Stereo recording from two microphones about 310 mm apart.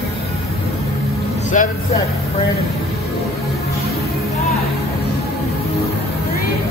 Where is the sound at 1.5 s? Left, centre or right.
Left.